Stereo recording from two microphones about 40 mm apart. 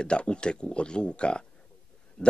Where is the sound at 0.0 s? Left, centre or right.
Left.